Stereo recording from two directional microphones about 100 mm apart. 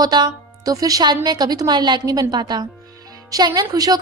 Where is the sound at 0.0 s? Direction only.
40° right (ahead or behind).